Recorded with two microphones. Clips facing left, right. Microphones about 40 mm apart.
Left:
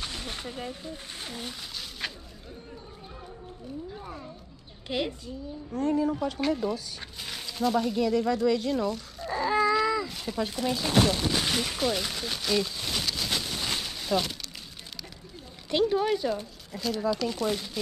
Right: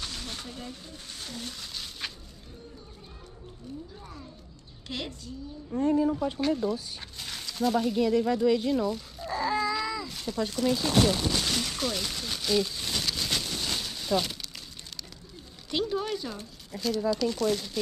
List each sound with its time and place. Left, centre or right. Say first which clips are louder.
0.0 s speech: left 2 dB; left
1.8 s slosh: left 2 dB; centre
4.0 s speech: left 4 dB; left
4.8 s speech: left 6 dB; centre
15.9 s speech: left 6 dB; centre